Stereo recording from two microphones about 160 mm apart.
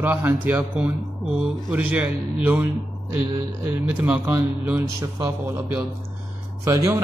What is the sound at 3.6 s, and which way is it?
A man's voice, 10° right (ahead or behind).